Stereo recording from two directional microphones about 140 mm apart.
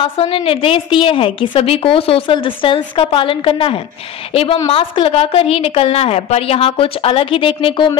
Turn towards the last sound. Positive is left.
turn(degrees=35)  # may be behind; listen again after turning